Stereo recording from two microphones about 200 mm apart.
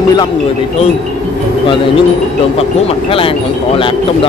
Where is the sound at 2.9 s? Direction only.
25° left (ahead or behind).